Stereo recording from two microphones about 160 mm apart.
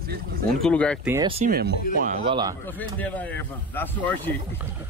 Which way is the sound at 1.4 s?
70° right (ahead or behind).